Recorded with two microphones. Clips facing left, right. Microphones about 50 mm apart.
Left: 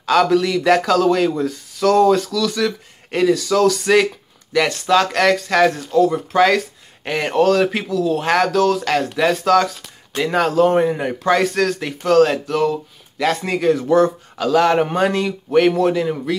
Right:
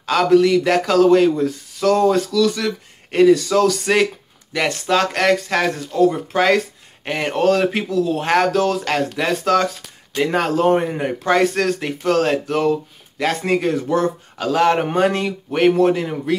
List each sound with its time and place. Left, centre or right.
0.2 s speech: centre
7.4 s speech: right